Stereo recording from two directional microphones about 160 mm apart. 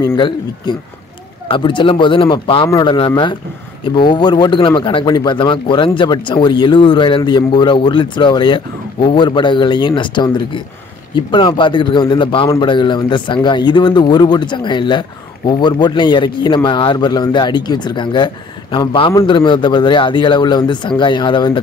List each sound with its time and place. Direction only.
0.0 s a man's voice: 30° left (ahead or behind)